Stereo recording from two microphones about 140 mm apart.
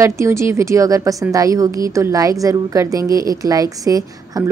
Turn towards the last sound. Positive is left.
turn(degrees=-25)  # may be behind; listen again after turning